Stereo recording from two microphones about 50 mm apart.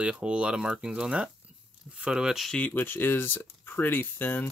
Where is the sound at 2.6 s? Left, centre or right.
Left.